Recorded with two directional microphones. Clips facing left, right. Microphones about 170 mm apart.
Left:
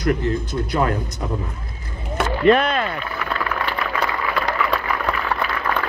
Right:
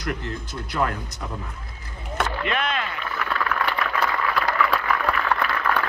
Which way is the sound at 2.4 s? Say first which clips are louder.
Left 10 dB; 40° left (ahead or behind).